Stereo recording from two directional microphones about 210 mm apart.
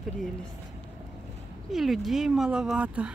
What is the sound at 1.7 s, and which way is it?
Speech, centre (ahead or behind).